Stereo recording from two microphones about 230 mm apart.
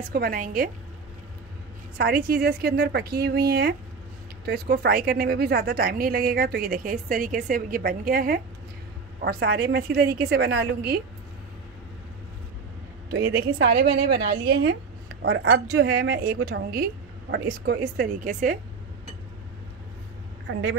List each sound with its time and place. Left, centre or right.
0.1 s a woman's voice: right
2.0 s a woman's voice: right
13.1 s a woman's voice: right
20.5 s speech: right